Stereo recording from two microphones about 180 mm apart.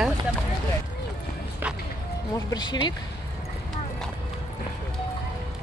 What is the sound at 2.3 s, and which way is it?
Speech, 25° left (ahead or behind).